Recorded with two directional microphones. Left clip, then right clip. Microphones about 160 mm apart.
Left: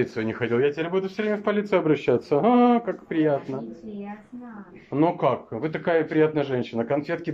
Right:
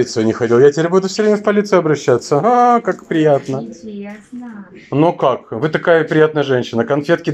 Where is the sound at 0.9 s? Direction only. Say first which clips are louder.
Right 11 dB; 10° left (ahead or behind).